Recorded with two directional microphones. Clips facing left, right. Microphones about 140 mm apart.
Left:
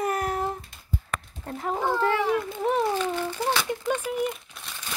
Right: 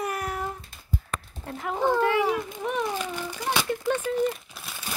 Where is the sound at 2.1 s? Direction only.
15° right (ahead or behind).